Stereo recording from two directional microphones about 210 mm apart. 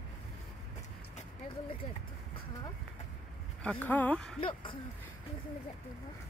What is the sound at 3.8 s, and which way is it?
Speech, 10° left (ahead or behind).